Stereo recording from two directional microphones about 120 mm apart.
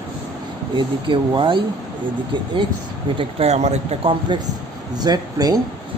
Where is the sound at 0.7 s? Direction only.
40° right (ahead or behind).